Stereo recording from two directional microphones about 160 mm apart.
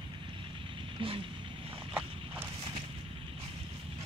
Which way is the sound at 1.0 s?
30° right (ahead or behind).